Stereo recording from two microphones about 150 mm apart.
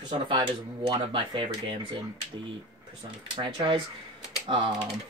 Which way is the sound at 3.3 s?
30° right (ahead or behind).